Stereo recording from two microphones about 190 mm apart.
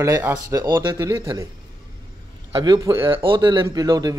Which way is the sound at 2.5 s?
25° right (ahead or behind).